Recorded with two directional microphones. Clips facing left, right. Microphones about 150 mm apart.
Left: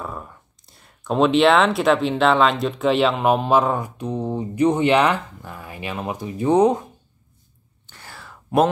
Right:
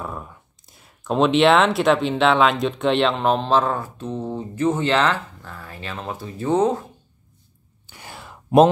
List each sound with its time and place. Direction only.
0.0 s speech: centre (ahead or behind); by 6.9 s 15° left (ahead or behind)
7.8 s whispering: 15° right (ahead or behind)